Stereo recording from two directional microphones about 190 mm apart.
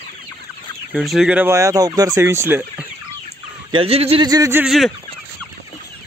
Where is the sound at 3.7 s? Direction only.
30° right (ahead or behind).